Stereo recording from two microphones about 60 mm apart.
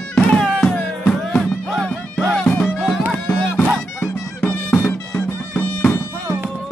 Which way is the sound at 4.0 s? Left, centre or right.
Left.